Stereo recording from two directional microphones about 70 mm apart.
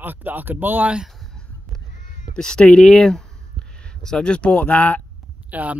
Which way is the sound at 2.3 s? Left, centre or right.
Centre.